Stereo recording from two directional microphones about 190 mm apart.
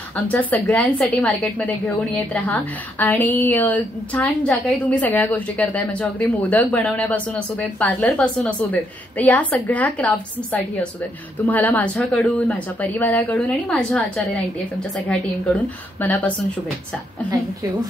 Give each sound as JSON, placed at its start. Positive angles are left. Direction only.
{"t": 0.1, "sound": "a woman's voice", "side_deg": 10}